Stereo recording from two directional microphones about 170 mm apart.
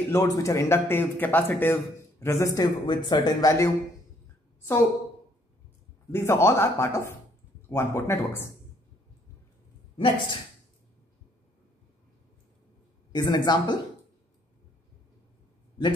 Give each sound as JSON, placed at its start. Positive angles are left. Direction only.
{"t": 0.1, "sound": "a man's voice", "side_deg": 20}
{"t": 6.1, "sound": "a man's voice", "side_deg": 15}
{"t": 9.9, "sound": "a woman's voice", "side_deg": 30}
{"t": 13.1, "sound": "speech", "side_deg": 25}
{"t": 15.8, "sound": "a man's voice", "side_deg": 25}